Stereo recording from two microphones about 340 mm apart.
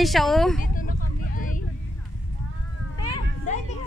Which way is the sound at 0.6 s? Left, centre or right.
Left.